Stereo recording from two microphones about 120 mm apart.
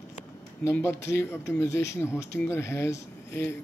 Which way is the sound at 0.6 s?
20° left (ahead or behind).